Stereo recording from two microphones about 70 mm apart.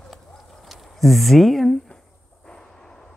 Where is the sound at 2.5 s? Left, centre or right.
Centre.